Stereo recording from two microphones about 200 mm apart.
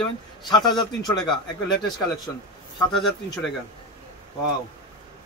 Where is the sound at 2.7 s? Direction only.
Centre (ahead or behind).